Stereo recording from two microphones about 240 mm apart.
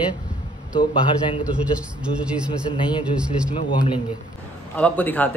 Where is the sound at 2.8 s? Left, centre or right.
Centre.